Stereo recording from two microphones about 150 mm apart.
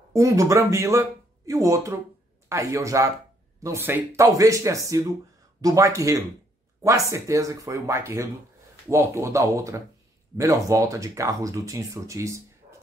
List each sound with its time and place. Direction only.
0.1 s speech: 20° right (ahead or behind)